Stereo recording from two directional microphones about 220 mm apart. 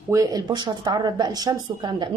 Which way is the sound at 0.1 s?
15° right (ahead or behind).